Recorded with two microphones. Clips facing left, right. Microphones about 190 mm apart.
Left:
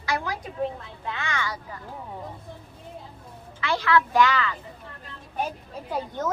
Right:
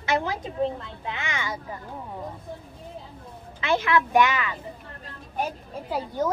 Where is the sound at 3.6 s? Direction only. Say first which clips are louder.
Even; 20° right (ahead or behind).